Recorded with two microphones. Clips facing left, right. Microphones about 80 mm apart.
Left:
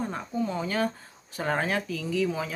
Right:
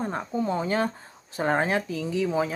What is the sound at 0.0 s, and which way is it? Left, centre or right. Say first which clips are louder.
Speech: right 2 dB; right.